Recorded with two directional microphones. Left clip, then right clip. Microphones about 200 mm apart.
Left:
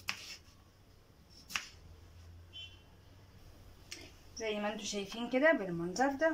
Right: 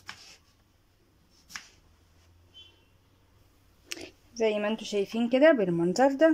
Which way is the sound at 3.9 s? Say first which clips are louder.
Right 9 dB; 55° right (ahead or behind).